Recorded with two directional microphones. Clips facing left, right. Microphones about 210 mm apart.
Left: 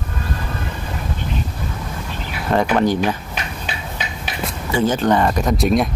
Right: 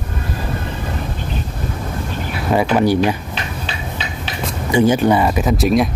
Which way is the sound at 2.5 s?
10° right (ahead or behind).